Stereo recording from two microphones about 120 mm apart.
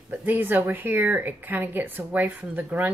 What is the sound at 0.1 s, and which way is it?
Speech, 15° right (ahead or behind).